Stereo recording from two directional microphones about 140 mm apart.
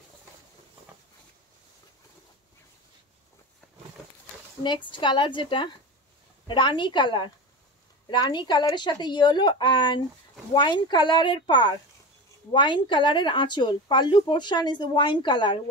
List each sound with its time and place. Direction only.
4.6 s speech: 35° left (ahead or behind)